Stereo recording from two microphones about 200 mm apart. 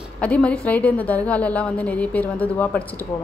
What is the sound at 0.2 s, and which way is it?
A woman's voice, 5° left (ahead or behind).